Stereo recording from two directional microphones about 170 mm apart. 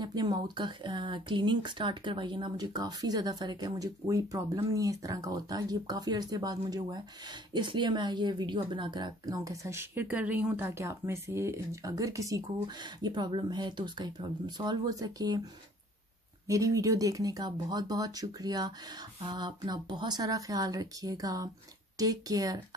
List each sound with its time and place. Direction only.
0.0 s speech: 25° right (ahead or behind)
16.4 s speech: 20° right (ahead or behind)